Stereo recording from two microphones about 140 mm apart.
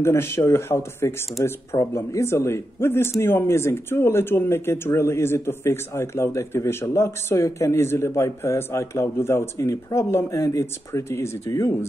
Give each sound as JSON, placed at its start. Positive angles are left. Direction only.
{"t": 0.0, "sound": "a man's voice", "side_deg": 20}